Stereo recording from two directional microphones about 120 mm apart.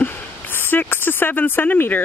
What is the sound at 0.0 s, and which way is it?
Speech, 15° left (ahead or behind).